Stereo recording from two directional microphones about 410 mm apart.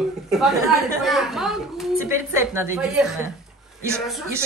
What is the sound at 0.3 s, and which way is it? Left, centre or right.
A woman's voice, centre.